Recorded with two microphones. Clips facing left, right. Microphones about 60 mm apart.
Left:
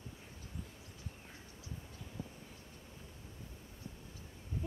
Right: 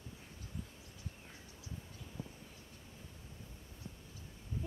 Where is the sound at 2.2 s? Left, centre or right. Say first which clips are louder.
Left 1 dB; right.